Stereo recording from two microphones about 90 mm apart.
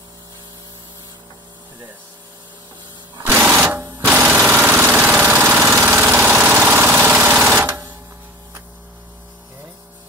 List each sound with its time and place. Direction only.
3.3 s sewing machine: 15° right (ahead or behind)
4.1 s engine: 15° right (ahead or behind)
7.4 s a sound: 20° right (ahead or behind)